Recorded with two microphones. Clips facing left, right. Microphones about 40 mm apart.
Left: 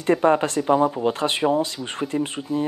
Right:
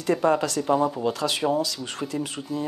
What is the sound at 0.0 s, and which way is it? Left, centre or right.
Speech, left.